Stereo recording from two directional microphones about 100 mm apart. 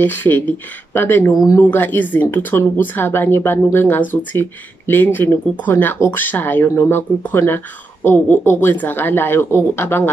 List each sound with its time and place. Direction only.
0.0 s speech: 20° left (ahead or behind)